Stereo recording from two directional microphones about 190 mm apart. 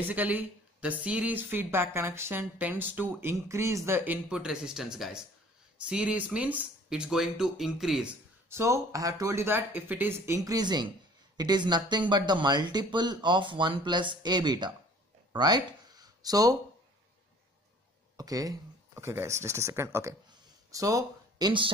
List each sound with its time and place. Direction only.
0.1 s speech: 10° right (ahead or behind)
15.3 s a sound: 20° right (ahead or behind)
18.1 s speech: 20° right (ahead or behind)